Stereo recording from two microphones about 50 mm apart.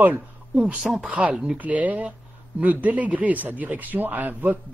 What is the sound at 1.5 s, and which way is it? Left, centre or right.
Speech, right.